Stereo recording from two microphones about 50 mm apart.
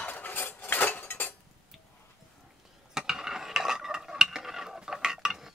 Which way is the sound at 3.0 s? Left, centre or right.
Centre.